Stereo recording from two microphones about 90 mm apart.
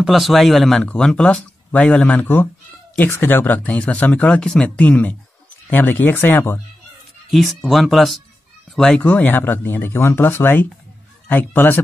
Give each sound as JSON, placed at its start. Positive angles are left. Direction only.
{"t": 0.0, "sound": "speech", "side_deg": 0}
{"t": 7.2, "sound": "speech", "side_deg": 0}
{"t": 9.0, "sound": "speech", "side_deg": 20}